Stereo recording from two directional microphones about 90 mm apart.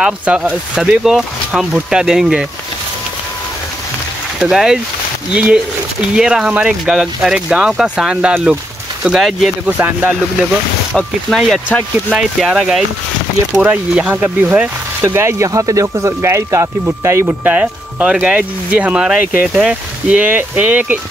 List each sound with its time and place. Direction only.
0.0 s speech: 15° right (ahead or behind)
4.4 s speech: 5° right (ahead or behind)
9.7 s speech: 20° right (ahead or behind)
11.3 s speech: centre (ahead or behind)
13.6 s speech: 15° right (ahead or behind)
15.0 s speech: 30° right (ahead or behind)
17.5 s speech: 15° right (ahead or behind)